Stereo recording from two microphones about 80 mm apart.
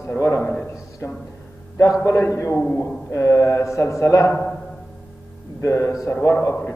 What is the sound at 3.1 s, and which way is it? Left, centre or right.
A man's voice, left.